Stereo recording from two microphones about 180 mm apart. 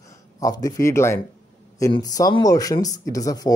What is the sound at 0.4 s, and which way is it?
Speech, 20° left (ahead or behind).